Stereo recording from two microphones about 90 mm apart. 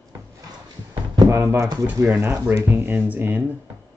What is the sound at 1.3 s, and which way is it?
Speech, 30° right (ahead or behind).